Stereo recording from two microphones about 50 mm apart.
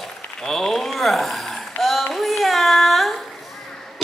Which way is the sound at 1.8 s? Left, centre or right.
Centre.